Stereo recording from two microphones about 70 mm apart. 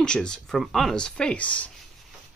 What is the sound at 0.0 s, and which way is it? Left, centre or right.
Speech, centre.